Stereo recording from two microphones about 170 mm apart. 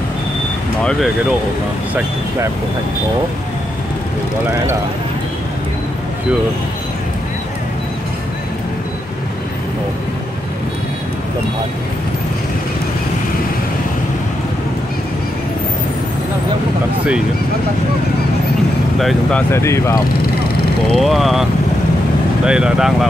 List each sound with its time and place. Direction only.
18.9 s speech: centre (ahead or behind)
19.5 s speech: 15° left (ahead or behind)
20.9 s speech: centre (ahead or behind)